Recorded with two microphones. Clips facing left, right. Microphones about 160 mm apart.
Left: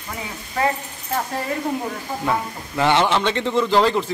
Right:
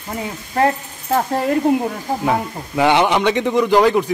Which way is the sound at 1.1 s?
60° right (ahead or behind).